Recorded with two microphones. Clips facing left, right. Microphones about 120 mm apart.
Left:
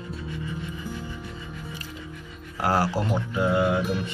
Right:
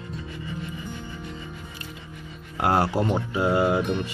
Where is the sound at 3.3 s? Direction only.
10° right (ahead or behind).